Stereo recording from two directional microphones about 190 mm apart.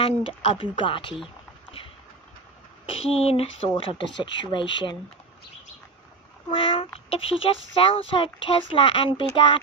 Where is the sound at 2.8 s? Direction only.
30° left (ahead or behind).